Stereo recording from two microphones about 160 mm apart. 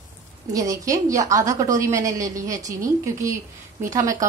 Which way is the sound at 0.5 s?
20° right (ahead or behind).